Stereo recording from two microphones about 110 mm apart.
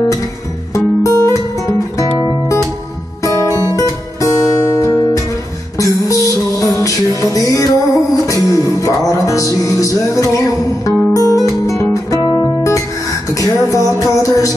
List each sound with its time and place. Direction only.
0.7 s music: 30° left (ahead or behind)
3.2 s music: 30° left (ahead or behind)
11.4 s guitar: 30° left (ahead or behind)
12.2 s music: 40° left (ahead or behind)